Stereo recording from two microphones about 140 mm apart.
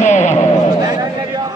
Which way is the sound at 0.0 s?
60° left (ahead or behind).